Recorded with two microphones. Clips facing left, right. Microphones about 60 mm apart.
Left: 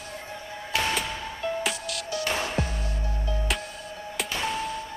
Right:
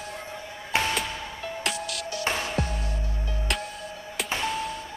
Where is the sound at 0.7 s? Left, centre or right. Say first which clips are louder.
Right 1 dB; right.